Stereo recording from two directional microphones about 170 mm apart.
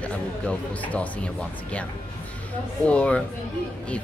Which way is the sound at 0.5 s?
10° left (ahead or behind).